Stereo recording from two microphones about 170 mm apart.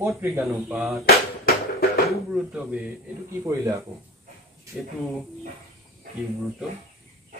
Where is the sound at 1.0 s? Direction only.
70° left (ahead or behind).